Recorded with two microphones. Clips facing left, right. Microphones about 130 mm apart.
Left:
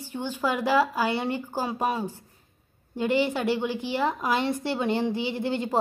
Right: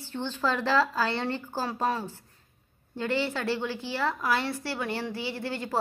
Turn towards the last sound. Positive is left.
turn(degrees=20)  # may be behind; listen again after turning